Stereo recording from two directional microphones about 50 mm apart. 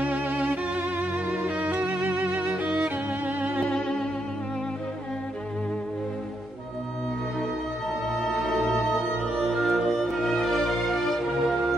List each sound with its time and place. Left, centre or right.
0.0 s music: right
2.1 s music: right
2.5 s music: right
3.6 s music: centre
8.1 s music: centre